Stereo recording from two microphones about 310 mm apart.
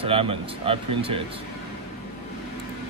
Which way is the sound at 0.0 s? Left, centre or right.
Centre.